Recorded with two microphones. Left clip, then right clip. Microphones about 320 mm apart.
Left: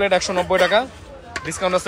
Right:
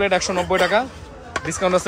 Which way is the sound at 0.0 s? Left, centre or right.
Centre.